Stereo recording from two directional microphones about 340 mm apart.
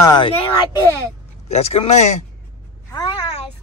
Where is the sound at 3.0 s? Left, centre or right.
Centre.